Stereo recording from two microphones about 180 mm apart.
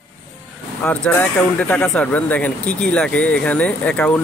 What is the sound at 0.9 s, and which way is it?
Speech, 10° left (ahead or behind).